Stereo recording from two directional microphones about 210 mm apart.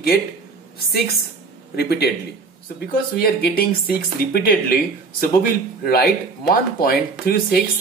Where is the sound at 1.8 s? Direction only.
50° left (ahead or behind).